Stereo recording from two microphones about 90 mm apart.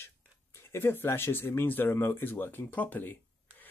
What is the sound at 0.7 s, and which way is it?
Speech, 25° left (ahead or behind).